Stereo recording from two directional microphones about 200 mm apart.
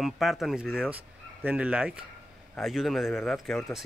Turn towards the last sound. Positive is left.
turn(degrees=0)  # may be behind; listen again after turning